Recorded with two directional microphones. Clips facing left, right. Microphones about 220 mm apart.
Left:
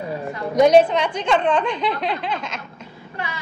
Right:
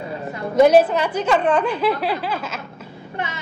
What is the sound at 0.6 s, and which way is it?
A woman's voice, 5° right (ahead or behind).